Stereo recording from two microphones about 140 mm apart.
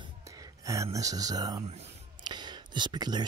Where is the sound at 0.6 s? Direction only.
25° right (ahead or behind).